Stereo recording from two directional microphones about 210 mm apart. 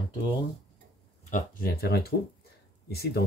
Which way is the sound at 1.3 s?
40° left (ahead or behind).